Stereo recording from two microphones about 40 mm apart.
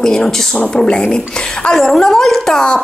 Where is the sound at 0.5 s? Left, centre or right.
Left.